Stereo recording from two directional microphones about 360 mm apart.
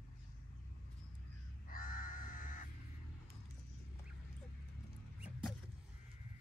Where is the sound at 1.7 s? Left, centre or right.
Left.